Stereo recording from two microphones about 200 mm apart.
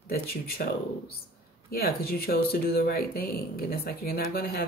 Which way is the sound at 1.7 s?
50° left (ahead or behind).